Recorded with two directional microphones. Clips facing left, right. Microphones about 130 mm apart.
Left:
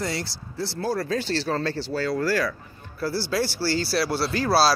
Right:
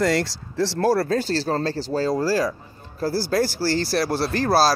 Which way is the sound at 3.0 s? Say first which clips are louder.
Right 4 dB; 45° right (ahead or behind).